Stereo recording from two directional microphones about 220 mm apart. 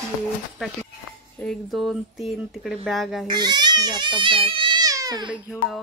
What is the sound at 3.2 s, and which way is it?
Speech, 20° right (ahead or behind).